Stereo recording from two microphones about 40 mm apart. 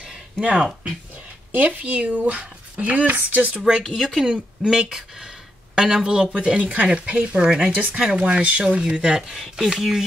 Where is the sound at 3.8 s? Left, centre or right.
Centre.